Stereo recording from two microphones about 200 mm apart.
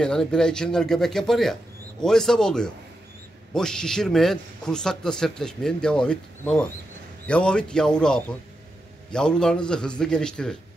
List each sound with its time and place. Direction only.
0.0 s a man's voice: 5° left (ahead or behind)